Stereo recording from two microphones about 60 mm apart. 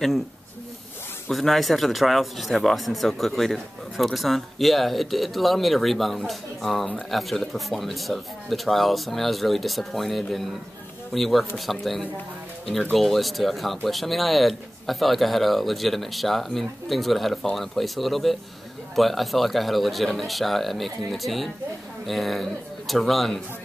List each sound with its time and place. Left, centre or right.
1.3 s speech: centre